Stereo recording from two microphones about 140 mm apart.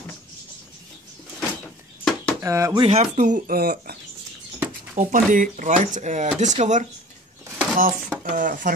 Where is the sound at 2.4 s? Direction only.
20° right (ahead or behind).